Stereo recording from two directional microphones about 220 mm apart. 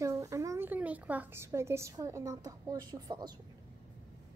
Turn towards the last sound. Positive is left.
turn(degrees=-15)  # may be behind; listen again after turning